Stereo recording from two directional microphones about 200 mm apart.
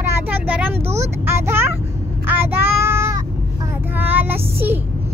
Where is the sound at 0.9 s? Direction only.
15° right (ahead or behind).